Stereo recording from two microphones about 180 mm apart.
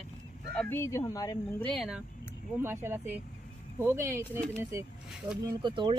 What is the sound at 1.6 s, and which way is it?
Speech, centre (ahead or behind).